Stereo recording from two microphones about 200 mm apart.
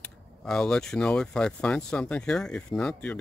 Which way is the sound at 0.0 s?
5° left (ahead or behind).